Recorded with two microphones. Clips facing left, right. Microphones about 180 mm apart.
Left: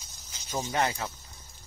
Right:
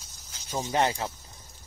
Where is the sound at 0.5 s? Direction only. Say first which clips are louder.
Right 3 dB; 25° right (ahead or behind).